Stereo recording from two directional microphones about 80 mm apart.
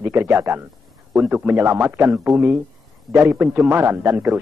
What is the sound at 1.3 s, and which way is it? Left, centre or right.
Speech, centre.